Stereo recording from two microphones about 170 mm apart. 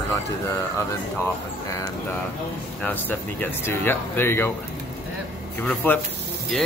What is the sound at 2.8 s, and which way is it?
Speech, 10° left (ahead or behind).